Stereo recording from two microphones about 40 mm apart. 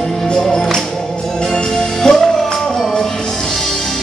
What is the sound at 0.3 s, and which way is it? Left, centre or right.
Music, centre.